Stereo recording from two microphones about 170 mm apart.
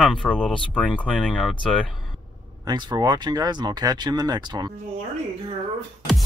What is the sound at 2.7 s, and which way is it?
Speech, 25° right (ahead or behind).